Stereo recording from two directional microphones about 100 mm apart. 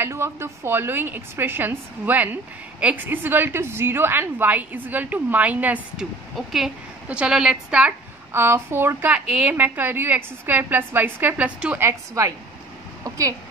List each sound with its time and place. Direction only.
0.0 s a woman's voice: 25° right (ahead or behind)
6.3 s a woman's voice: 5° right (ahead or behind)
8.3 s a woman's voice: 25° right (ahead or behind)
12.1 s a woman's voice: 30° right (ahead or behind)